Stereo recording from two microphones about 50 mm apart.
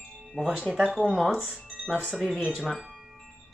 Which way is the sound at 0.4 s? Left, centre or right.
Centre.